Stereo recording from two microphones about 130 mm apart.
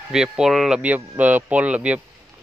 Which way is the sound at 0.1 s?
5° right (ahead or behind).